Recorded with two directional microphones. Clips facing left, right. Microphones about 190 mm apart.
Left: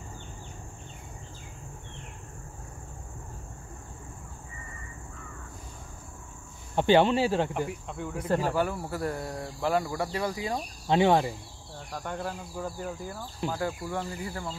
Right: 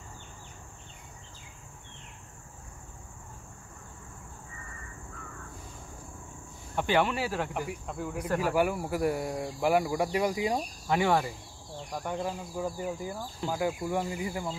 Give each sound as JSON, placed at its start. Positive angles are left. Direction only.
{"t": 6.7, "sound": "speech", "side_deg": 30}
{"t": 7.5, "sound": "speech", "side_deg": 0}
{"t": 10.9, "sound": "speech", "side_deg": 25}
{"t": 11.8, "sound": "speech", "side_deg": -10}